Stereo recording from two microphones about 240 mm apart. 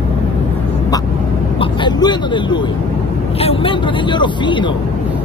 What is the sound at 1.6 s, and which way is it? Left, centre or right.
Speech, centre.